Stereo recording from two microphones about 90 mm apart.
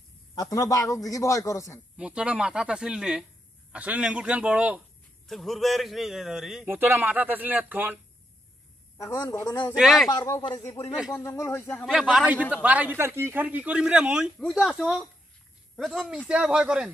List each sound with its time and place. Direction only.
0.3 s a man's voice: 45° left (ahead or behind)
2.0 s speech: 10° right (ahead or behind)
5.2 s a man's voice: centre (ahead or behind)
6.6 s speech: 25° right (ahead or behind)
8.9 s a man's voice: 40° left (ahead or behind)
9.8 s a man's voice: 5° right (ahead or behind)
11.2 s speech: 30° left (ahead or behind)
11.8 s a man's voice: 5° right (ahead or behind)